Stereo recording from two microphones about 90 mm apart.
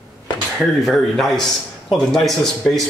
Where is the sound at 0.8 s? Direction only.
Centre (ahead or behind).